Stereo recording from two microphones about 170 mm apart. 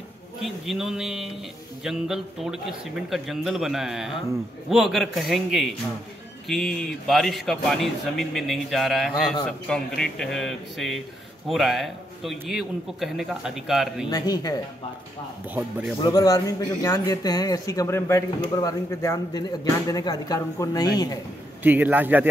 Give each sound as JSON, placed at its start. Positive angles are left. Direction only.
{"t": 0.4, "sound": "a man's voice", "side_deg": 0}
{"t": 14.0, "sound": "a man's voice", "side_deg": 20}
{"t": 16.0, "sound": "a man's voice", "side_deg": 25}
{"t": 21.6, "sound": "a man's voice", "side_deg": -10}